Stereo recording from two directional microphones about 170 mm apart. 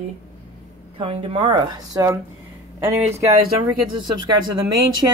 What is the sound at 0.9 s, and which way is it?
A woman's voice, 30° right (ahead or behind).